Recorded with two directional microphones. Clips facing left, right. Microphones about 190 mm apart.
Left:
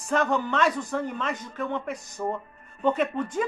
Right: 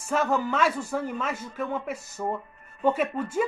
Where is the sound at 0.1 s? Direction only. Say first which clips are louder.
Even; 5° right (ahead or behind).